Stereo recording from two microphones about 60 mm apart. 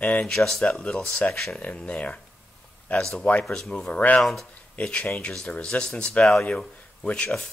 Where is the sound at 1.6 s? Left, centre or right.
Centre.